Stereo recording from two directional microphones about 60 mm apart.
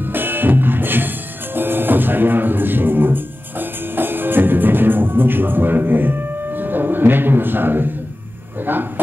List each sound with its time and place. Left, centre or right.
0.0 s music: right
8.6 s speech: right